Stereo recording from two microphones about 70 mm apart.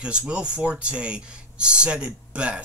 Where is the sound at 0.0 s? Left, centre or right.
Centre.